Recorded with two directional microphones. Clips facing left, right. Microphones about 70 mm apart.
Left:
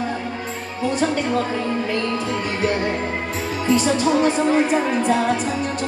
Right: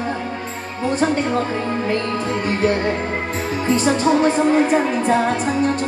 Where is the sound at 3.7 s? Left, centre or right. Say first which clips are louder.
Even; right.